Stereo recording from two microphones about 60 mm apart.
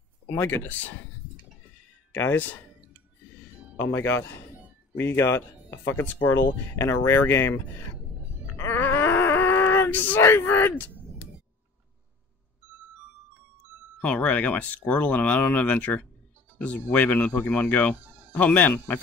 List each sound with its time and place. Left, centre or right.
0.3 s speech: left
0.7 s speech: left
2.1 s speech: left
3.9 s speech: left
6.8 s speech: left
8.7 s a sound: left
14.0 s speech: left
18.0 s a sound: right
18.3 s speech: left